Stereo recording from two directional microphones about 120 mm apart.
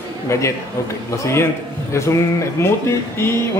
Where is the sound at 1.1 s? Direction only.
25° left (ahead or behind).